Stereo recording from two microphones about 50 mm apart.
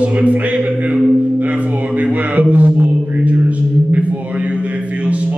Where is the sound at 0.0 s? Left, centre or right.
Right.